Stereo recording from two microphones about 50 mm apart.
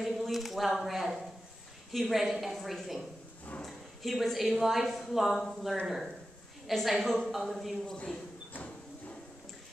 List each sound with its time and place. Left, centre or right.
0.0 s a woman's voice: centre
7.8 s a man's voice: centre